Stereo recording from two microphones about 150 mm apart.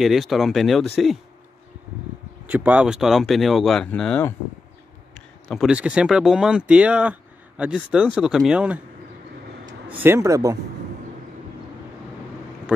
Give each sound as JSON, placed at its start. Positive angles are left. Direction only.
{"t": 0.0, "sound": "speech", "side_deg": 0}
{"t": 2.5, "sound": "speech", "side_deg": -10}
{"t": 9.8, "sound": "speech", "side_deg": -15}